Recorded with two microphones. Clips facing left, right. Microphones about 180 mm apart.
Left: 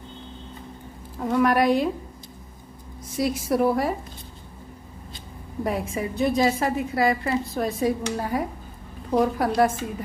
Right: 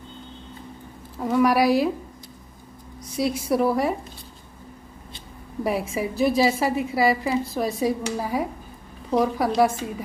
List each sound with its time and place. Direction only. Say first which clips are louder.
1.2 s a woman's voice: right 1 dB; 5° right (ahead or behind)
3.1 s a woman's voice: right 1 dB; centre (ahead or behind)
5.6 s a woman's voice: right 2 dB; 5° right (ahead or behind)
9.6 s a woman's voice: right 1 dB; centre (ahead or behind)